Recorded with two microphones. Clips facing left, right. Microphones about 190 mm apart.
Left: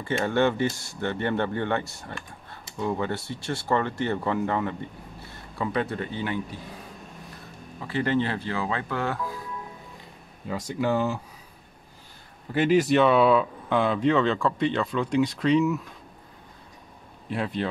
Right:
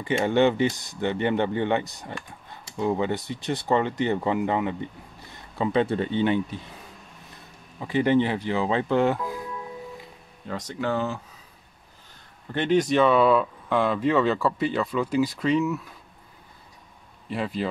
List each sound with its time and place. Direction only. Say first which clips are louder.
0.0 s speech: right 3 dB; 15° right (ahead or behind)
7.8 s speech: right 4 dB; 15° right (ahead or behind)
10.4 s speech: left 2 dB; 10° left (ahead or behind)
12.5 s speech: left 1 dB; 5° left (ahead or behind)
17.3 s speech: even; centre (ahead or behind)